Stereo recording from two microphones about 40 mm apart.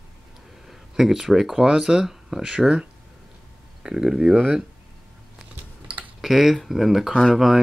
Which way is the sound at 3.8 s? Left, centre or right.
Centre.